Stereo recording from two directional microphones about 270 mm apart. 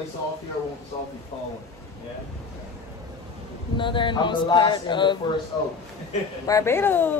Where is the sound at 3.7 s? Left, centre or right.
Centre.